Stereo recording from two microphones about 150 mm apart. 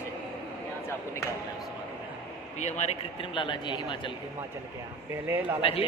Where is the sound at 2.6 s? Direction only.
50° left (ahead or behind).